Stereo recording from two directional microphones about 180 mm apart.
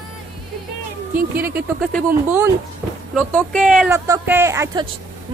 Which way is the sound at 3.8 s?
15° right (ahead or behind).